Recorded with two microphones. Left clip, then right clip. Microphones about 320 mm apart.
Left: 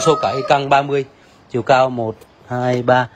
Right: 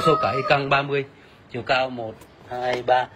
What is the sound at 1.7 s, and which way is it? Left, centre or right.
Speech, left.